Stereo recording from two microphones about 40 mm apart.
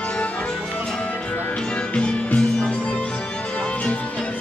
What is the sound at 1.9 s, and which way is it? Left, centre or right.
Music, left.